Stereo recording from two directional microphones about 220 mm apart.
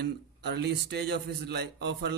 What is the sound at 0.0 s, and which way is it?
A man's voice, 50° right (ahead or behind).